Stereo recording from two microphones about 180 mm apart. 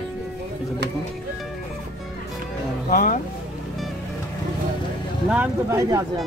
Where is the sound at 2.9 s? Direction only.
50° left (ahead or behind).